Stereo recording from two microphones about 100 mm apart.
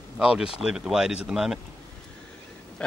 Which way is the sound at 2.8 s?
10° left (ahead or behind).